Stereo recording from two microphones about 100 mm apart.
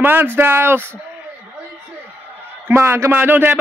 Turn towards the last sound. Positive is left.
turn(degrees=-20)  # may be behind; listen again after turning